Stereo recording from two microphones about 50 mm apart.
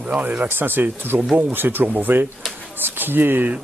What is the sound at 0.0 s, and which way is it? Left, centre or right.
Speech, right.